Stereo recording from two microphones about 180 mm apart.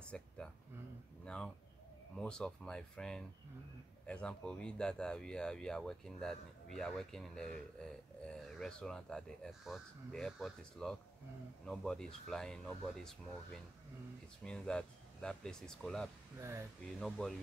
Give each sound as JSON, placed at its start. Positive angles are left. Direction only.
{"t": 0.1, "sound": "speech", "side_deg": 5}
{"t": 16.3, "sound": "speech", "side_deg": -15}
{"t": 16.8, "sound": "speech", "side_deg": 0}